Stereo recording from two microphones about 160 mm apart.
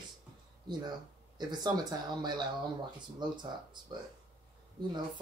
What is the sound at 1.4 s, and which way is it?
Speech, 25° right (ahead or behind).